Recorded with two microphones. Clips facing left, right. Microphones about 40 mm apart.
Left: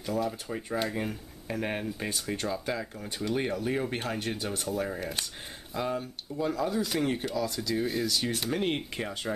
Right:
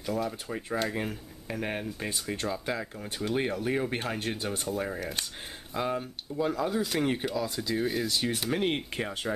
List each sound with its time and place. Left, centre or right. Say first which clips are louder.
0.0 s speech: left 1 dB; centre